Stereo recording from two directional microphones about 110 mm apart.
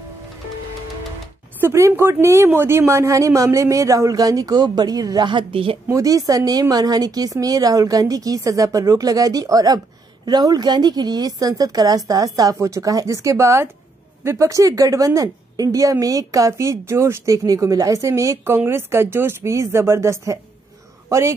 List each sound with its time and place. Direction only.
1.6 s a woman's voice: 25° right (ahead or behind); by 5.8 s 55° right (ahead or behind)
5.9 s a woman's voice: 30° right (ahead or behind)